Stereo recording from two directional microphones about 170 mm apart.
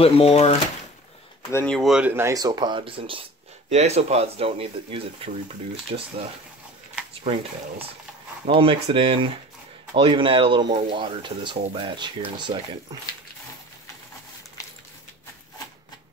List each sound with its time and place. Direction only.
0.0 s speech: 35° left (ahead or behind)
1.5 s speech: 10° left (ahead or behind)
1.8 s speech: 5° right (ahead or behind); by 6.1 s 35° right (ahead or behind)
8.5 s speech: 35° right (ahead or behind)